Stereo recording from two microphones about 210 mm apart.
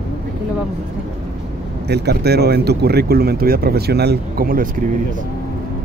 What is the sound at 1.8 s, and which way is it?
Speech, 50° right (ahead or behind).